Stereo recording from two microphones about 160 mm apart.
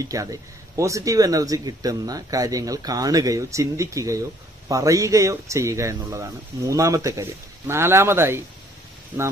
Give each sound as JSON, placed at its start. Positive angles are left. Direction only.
{"t": 0.0, "sound": "speech", "side_deg": -20}